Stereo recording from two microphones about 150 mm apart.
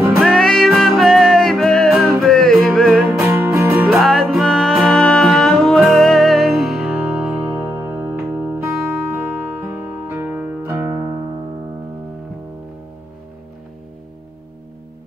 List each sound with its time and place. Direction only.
0.0 s music: centre (ahead or behind)
3.3 s music: 15° right (ahead or behind)
3.7 s music: centre (ahead or behind)
7.5 s music: 20° right (ahead or behind)